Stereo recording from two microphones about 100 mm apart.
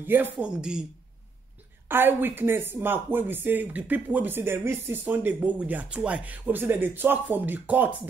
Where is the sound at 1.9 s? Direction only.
20° right (ahead or behind).